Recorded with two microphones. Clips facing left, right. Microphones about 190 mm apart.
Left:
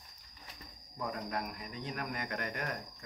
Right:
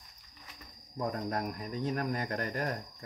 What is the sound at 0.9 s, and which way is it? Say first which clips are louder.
Speech: right 4 dB; 40° right (ahead or behind).